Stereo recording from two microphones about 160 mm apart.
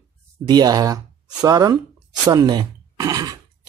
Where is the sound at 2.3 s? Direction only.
25° right (ahead or behind).